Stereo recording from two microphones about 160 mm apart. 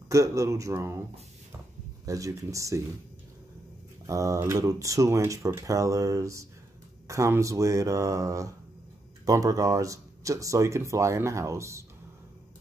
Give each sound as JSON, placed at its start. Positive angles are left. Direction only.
{"t": 0.1, "sound": "speech", "side_deg": -20}
{"t": 2.0, "sound": "speech", "side_deg": -20}
{"t": 4.0, "sound": "speech", "side_deg": -20}